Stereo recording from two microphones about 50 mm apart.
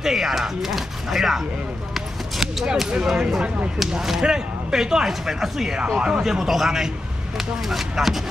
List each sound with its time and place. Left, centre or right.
0.0 s speech: centre
2.0 s clip-clop: centre
2.9 s speech: centre
6.3 s speech: centre